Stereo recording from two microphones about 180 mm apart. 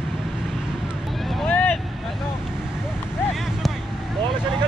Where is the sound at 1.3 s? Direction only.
5° left (ahead or behind).